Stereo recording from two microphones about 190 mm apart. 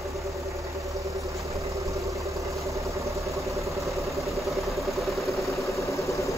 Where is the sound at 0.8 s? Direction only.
15° right (ahead or behind).